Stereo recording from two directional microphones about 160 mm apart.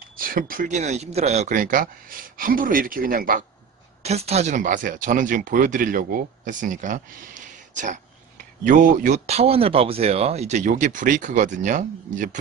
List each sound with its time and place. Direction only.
0.2 s speech: 60° right (ahead or behind)
4.0 s speech: 40° right (ahead or behind)